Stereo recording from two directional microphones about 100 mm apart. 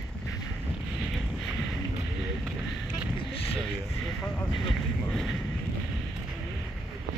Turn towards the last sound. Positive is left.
turn(degrees=0)  # may be behind; listen again after turning